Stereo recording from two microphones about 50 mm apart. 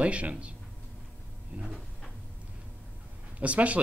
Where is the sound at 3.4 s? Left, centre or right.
Right.